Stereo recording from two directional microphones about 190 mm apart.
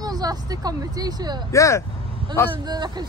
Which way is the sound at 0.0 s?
20° right (ahead or behind).